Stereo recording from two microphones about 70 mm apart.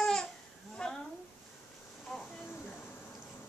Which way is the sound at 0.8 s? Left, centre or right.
Centre.